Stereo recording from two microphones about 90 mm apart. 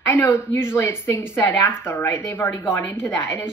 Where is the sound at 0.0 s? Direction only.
30° left (ahead or behind).